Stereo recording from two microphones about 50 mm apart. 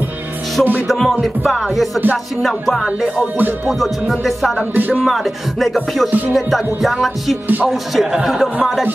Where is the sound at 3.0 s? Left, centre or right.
Right.